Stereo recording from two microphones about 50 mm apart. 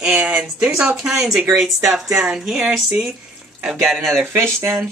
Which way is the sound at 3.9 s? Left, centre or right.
Centre.